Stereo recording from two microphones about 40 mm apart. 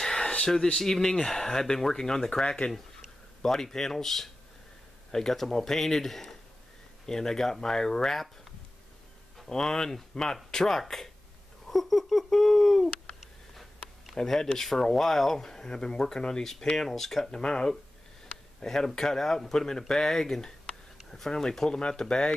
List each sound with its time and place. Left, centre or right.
0.0 s a sound: centre
0.7 s speech: centre
3.4 s speech: centre
9.5 s speech: centre
14.2 s speech: centre
17.3 s speech: left